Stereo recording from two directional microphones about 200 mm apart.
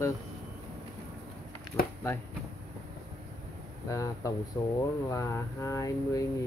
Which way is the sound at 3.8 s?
15° left (ahead or behind).